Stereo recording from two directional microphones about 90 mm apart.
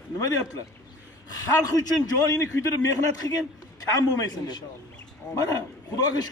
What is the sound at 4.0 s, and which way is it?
Speech, 50° left (ahead or behind).